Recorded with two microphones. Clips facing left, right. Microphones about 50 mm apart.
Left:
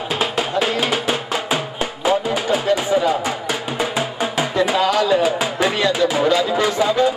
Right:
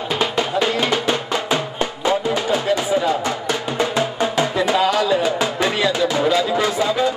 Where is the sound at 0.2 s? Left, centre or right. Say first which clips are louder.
Right 1 dB; centre.